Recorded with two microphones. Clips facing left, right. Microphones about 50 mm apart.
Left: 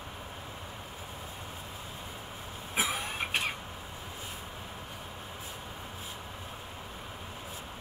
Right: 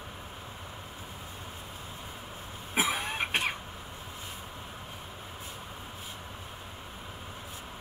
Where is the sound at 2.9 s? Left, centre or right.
Right.